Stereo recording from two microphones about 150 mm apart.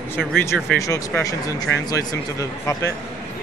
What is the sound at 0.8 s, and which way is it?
Speech, 20° left (ahead or behind).